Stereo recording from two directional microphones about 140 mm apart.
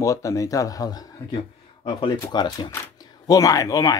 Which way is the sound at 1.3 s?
40° left (ahead or behind).